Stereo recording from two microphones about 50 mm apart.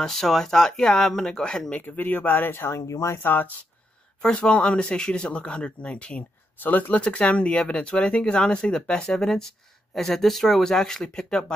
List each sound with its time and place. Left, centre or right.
0.0 s speech: centre
1.8 s speech: left
2.5 s speech: left
2.9 s speech: left
3.2 s speech: left
4.2 s speech: centre
6.6 s speech: left
7.0 s speech: left